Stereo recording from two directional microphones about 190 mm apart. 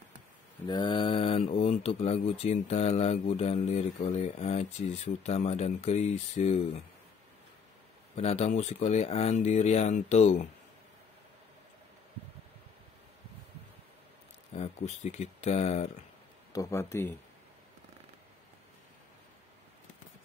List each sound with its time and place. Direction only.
0.7 s speech: 25° left (ahead or behind)
8.2 s speech: 35° left (ahead or behind)
14.5 s speech: 35° left (ahead or behind)
16.5 s speech: 15° left (ahead or behind)